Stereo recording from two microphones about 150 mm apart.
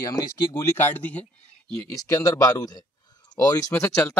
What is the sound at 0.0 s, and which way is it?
Speech, 25° left (ahead or behind).